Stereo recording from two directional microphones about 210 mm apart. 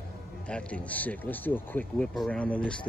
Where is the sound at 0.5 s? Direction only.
5° left (ahead or behind).